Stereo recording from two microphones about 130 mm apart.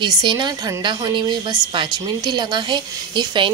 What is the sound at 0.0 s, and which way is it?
A woman's voice, 35° right (ahead or behind).